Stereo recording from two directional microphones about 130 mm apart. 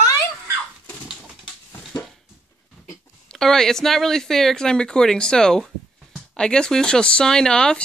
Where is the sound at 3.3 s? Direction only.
5° left (ahead or behind).